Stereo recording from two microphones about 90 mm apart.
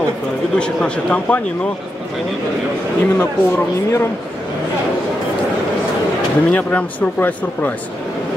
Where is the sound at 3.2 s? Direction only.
30° left (ahead or behind).